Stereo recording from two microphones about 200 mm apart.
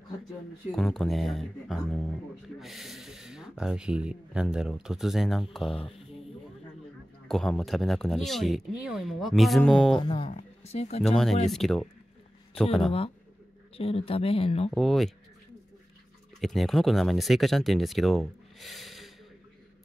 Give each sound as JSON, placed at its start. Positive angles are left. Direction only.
{"t": 0.7, "sound": "speech", "side_deg": 0}
{"t": 7.2, "sound": "speech", "side_deg": 0}
{"t": 9.9, "sound": "speech", "side_deg": 25}
{"t": 11.4, "sound": "speech", "side_deg": 0}
{"t": 13.7, "sound": "speech", "side_deg": 30}
{"t": 14.7, "sound": "speech", "side_deg": 0}
{"t": 16.3, "sound": "speech", "side_deg": 0}